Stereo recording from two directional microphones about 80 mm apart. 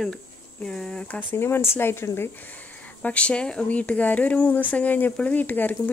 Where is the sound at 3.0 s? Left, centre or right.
Centre.